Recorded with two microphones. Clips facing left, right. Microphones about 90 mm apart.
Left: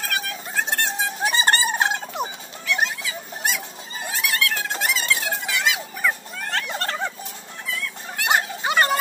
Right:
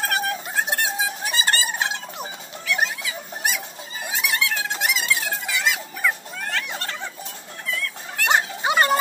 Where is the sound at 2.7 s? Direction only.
5° right (ahead or behind).